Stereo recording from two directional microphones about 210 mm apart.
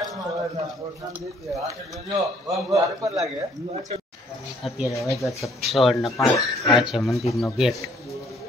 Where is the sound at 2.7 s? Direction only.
15° right (ahead or behind).